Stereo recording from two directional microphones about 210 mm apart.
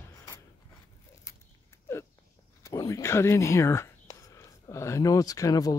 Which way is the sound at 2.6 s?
15° left (ahead or behind).